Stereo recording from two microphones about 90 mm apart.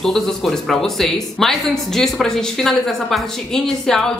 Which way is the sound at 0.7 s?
5° left (ahead or behind).